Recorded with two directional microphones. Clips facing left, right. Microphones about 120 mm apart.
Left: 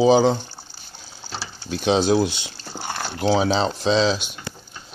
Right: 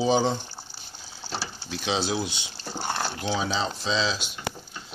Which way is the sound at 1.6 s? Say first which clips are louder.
Left 10 dB; 50° left (ahead or behind).